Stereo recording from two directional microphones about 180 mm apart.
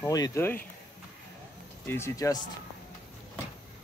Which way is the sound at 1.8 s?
15° left (ahead or behind).